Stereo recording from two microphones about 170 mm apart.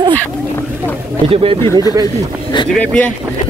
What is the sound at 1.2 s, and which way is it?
Speech, 35° right (ahead or behind).